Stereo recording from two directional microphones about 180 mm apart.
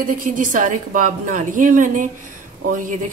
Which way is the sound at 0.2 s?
45° right (ahead or behind).